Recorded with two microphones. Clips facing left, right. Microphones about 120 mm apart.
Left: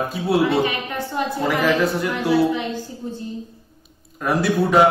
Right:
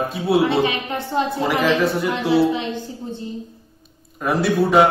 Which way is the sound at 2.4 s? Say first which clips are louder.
Right 1 dB; 25° right (ahead or behind).